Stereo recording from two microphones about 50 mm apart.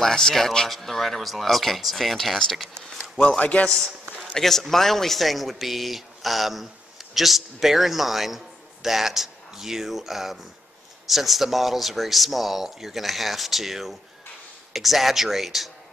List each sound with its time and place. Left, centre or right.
0.0 s speech: centre
2.8 s a sound: centre
3.2 s a man's voice: left
4.3 s speech: centre